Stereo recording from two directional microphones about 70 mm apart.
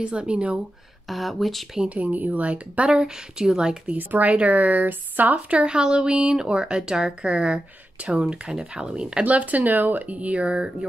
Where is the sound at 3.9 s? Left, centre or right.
Right.